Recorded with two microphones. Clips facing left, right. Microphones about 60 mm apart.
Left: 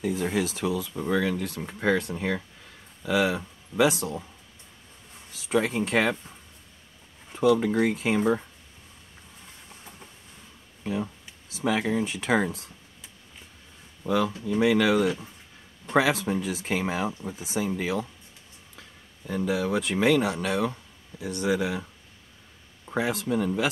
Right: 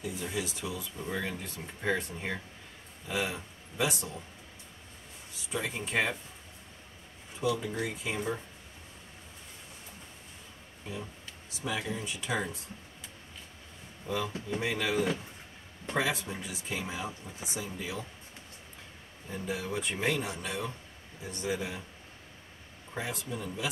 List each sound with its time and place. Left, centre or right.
0.0 s speech: left
5.3 s speech: left
7.3 s speech: left
11.5 s speech: left
14.0 s speech: left
19.2 s speech: left
22.9 s speech: left